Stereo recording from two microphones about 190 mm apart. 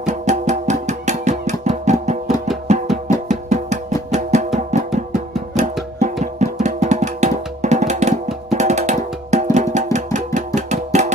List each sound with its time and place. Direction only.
0.0 s music: 40° right (ahead or behind)